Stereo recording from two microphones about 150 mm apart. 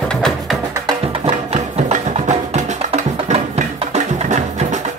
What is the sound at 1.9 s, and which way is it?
Music, 55° right (ahead or behind).